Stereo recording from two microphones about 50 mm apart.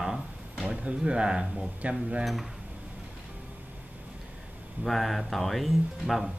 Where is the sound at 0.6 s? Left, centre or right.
Right.